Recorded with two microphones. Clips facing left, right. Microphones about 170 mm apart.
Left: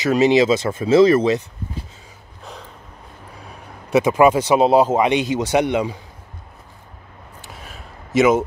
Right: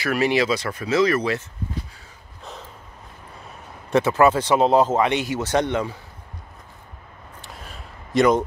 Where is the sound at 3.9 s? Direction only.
10° left (ahead or behind).